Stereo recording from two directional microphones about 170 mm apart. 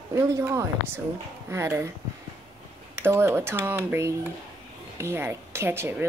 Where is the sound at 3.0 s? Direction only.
15° right (ahead or behind).